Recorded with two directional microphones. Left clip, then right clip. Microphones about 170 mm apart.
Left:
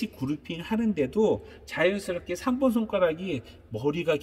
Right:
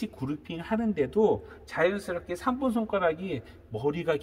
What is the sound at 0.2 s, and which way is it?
A man's voice, 20° right (ahead or behind).